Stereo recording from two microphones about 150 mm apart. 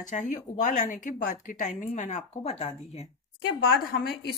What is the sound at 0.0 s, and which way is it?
A woman's voice, 60° left (ahead or behind).